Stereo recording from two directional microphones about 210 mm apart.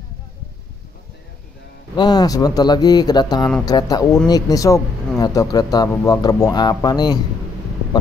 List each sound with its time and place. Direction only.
2.0 s speech: 20° left (ahead or behind)